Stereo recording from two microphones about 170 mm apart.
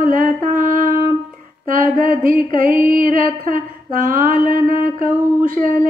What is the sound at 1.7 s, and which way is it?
Female singing, 55° right (ahead or behind).